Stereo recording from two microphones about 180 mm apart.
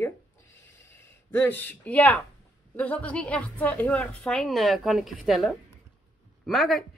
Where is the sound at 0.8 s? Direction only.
15° left (ahead or behind).